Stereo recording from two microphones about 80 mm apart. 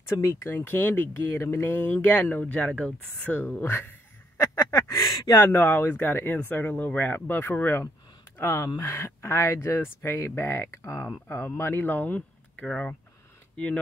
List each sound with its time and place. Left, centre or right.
0.1 s speech: left
5.4 s speech: left